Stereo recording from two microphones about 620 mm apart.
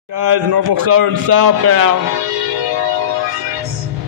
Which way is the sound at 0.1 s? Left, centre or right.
Right.